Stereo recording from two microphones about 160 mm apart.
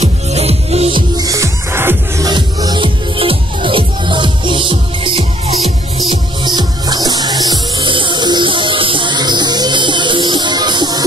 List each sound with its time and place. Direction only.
0.0 s music: 40° right (ahead or behind)
1.1 s music: 20° right (ahead or behind)
6.4 s music: 25° right (ahead or behind)